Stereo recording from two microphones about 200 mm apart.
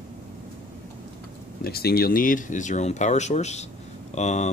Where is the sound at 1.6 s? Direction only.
50° left (ahead or behind); by 4.5 s 35° left (ahead or behind).